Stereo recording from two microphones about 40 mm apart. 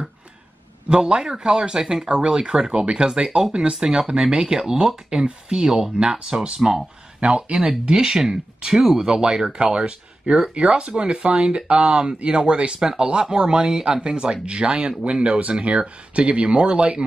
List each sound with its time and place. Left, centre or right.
0.8 s speech: right
7.8 s speech: centre